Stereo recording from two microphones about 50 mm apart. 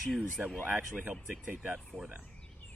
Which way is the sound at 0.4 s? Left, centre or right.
Centre.